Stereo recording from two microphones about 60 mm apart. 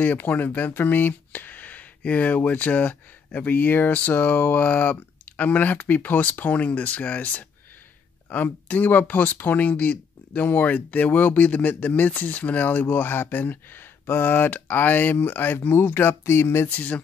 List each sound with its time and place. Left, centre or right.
0.0 s speech: left
16.6 s speech: left